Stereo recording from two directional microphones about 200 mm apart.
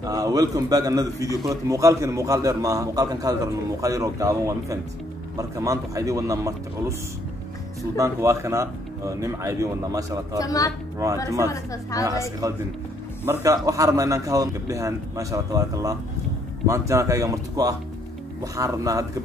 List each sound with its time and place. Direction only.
0.0 s a man's voice: 20° right (ahead or behind)
8.0 s a man's voice: 15° right (ahead or behind)
10.4 s a woman's voice: 15° left (ahead or behind)
13.2 s a man's voice: 15° right (ahead or behind)